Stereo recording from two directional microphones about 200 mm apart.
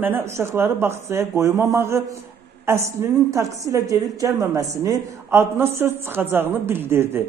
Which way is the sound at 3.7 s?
15° right (ahead or behind).